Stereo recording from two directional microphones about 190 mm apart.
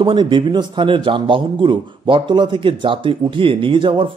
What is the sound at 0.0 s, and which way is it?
A man's voice, 25° right (ahead or behind).